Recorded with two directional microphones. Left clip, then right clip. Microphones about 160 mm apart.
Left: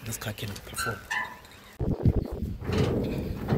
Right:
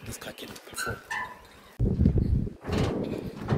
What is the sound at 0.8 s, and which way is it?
Speech, 65° right (ahead or behind).